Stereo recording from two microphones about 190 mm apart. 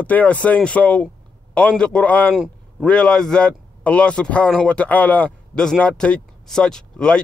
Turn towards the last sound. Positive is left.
turn(degrees=5)  # may be behind; listen again after turning